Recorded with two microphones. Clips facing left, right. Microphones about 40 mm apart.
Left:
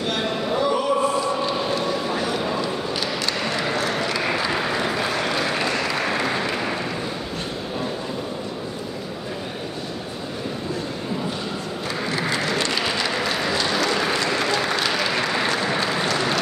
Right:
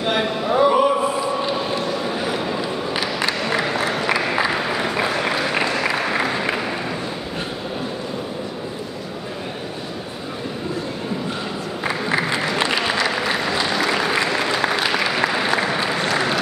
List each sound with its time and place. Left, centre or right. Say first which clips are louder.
0.0 s a sound: right 3 dB; centre
4.4 s applause: right 2 dB; centre
11.9 s applause: right 3 dB; centre